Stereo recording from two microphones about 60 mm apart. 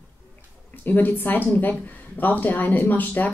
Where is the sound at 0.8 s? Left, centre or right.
Left.